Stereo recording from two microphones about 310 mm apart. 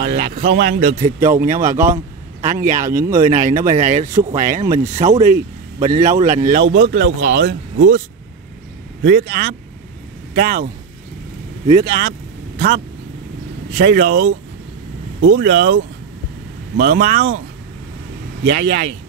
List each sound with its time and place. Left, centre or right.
0.0 s a man's voice: right
1.0 s speech: centre
2.4 s a man's voice: right
2.9 s speech: centre
3.2 s a man's voice: right
4.0 s speech: centre
4.4 s a man's voice: right
9.0 s a man's voice: right
15.3 s speech: right
18.5 s a man's voice: right